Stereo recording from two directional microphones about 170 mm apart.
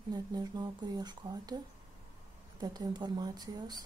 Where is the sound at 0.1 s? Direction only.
25° right (ahead or behind).